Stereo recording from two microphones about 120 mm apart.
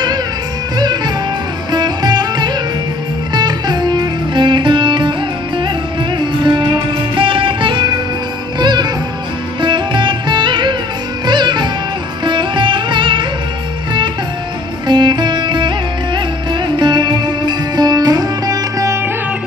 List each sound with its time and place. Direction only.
0.7 s music: 35° right (ahead or behind)
6.1 s music: 40° right (ahead or behind)
14.9 s music: 40° right (ahead or behind)